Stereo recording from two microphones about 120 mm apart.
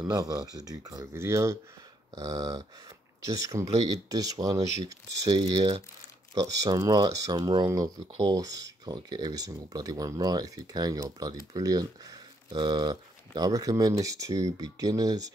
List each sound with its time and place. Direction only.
0.0 s speech: 30° right (ahead or behind)
2.1 s speech: 35° right (ahead or behind)